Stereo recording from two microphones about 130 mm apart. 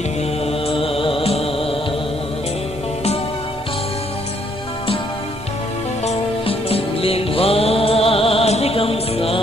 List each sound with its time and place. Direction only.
0.5 s mantra: 45° left (ahead or behind)
6.0 s music: 50° left (ahead or behind)